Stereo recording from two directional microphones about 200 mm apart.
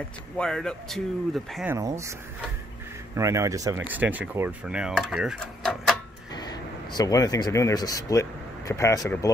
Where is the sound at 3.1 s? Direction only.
15° right (ahead or behind); by 5.9 s centre (ahead or behind).